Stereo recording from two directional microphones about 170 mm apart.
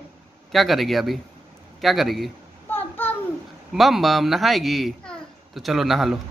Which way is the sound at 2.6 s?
10° left (ahead or behind).